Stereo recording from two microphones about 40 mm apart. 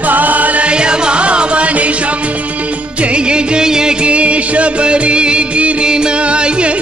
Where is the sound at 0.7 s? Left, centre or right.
Right.